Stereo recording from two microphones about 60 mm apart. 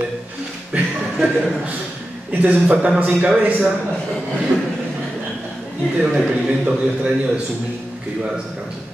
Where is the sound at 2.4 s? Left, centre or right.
Right.